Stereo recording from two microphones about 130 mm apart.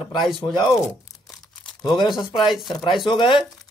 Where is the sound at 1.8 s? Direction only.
35° left (ahead or behind).